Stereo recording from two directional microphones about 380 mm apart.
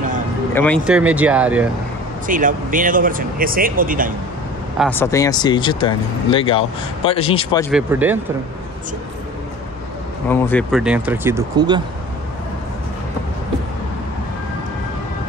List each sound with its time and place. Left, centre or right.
0.6 s speech: centre
2.2 s speech: right
4.7 s speech: centre
7.7 s speech: centre
10.3 s speech: centre